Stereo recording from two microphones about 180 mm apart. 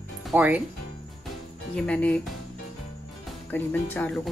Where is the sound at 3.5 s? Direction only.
10° left (ahead or behind).